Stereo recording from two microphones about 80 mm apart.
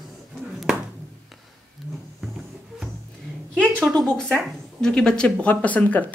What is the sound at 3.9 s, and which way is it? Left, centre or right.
Speech, centre.